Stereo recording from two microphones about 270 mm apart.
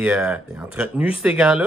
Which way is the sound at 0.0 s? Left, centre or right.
Centre.